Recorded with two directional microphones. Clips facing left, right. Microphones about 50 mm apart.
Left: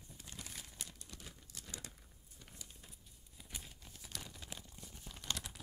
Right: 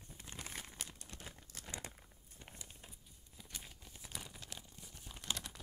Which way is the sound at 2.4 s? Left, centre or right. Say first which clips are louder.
Right 2 dB; right.